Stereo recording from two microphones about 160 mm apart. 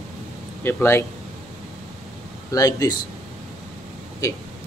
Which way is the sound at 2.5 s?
20° left (ahead or behind).